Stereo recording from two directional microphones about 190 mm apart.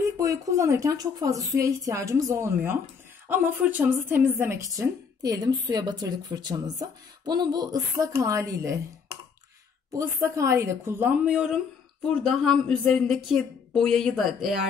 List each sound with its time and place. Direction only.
0.0 s a woman's voice: 15° right (ahead or behind)
9.8 s a woman's voice: 15° right (ahead or behind)